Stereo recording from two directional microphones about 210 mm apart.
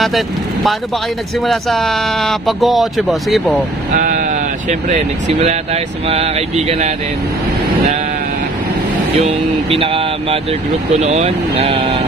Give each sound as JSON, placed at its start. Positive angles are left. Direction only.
{"t": 1.4, "sound": "speech", "side_deg": 0}
{"t": 3.9, "sound": "speech", "side_deg": -40}
{"t": 6.0, "sound": "mantra", "side_deg": -30}
{"t": 9.2, "sound": "mantra", "side_deg": -25}
{"t": 10.9, "sound": "speech", "side_deg": -30}